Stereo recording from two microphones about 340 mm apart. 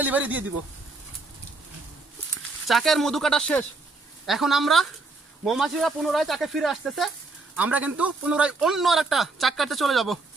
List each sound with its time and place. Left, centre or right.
0.0 s speech: centre
2.6 s speech: centre